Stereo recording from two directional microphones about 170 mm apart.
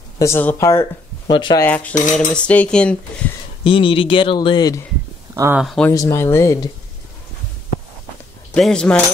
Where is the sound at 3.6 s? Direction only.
30° left (ahead or behind).